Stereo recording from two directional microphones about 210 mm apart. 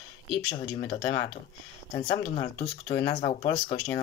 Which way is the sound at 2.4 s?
15° left (ahead or behind).